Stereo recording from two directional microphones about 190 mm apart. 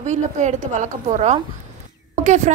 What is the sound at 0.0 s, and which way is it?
A woman's voice, 40° right (ahead or behind).